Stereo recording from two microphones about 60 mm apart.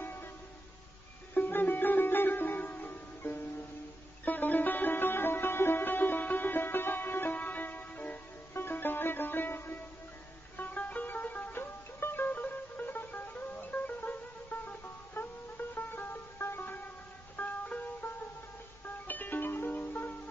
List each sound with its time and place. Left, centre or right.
0.0 s music: left
1.3 s music: left